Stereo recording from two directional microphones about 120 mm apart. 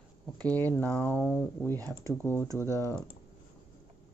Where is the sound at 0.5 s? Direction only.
15° left (ahead or behind).